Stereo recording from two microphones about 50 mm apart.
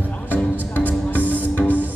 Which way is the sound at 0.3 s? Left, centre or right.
Left.